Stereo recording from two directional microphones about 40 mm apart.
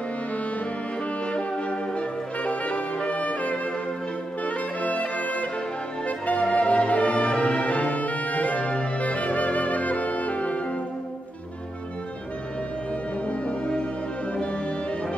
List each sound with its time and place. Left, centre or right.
1.2 s brass instrument: left
4.5 s music: left
13.3 s music: left